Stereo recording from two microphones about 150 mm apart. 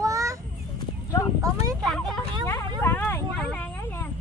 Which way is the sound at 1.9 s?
5° left (ahead or behind).